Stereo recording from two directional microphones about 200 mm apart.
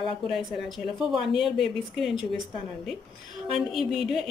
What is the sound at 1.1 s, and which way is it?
A woman's voice, centre (ahead or behind).